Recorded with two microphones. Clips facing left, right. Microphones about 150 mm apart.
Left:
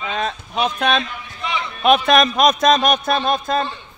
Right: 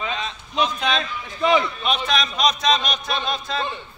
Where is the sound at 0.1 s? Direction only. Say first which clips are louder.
Left 5 dB; 55° left (ahead or behind).